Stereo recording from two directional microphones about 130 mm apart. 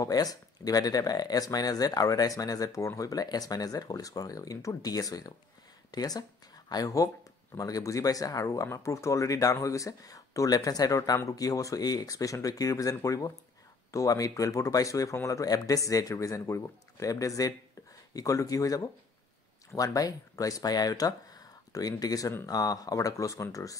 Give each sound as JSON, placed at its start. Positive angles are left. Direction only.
{"t": 0.0, "sound": "speech", "side_deg": 30}